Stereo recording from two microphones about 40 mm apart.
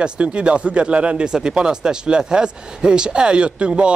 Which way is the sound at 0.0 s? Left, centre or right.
Right.